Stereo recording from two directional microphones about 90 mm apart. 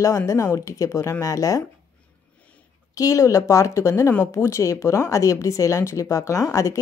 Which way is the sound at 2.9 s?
35° left (ahead or behind).